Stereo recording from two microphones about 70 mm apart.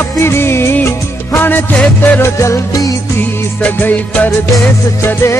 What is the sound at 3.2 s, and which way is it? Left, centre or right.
Music, left.